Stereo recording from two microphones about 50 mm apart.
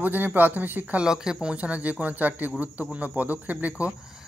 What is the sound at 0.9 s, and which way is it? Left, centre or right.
A man's voice, centre.